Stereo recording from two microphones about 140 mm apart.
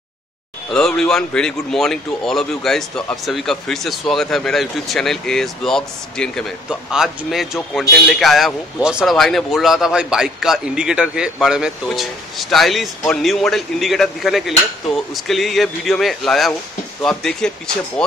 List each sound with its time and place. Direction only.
0.7 s a man's voice: 5° left (ahead or behind)